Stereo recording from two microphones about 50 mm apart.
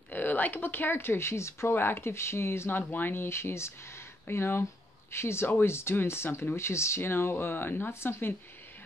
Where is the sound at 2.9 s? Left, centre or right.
Left.